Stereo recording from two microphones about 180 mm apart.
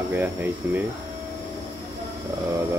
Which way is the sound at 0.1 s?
10° right (ahead or behind).